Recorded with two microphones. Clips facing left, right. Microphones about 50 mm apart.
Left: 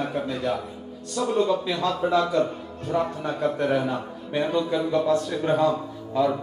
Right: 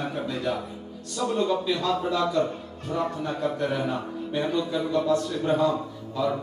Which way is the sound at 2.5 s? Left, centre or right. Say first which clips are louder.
Even; centre.